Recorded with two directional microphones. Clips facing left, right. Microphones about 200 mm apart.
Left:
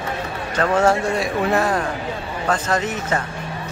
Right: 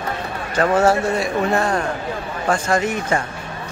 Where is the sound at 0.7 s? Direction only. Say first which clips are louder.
Even; 5° right (ahead or behind).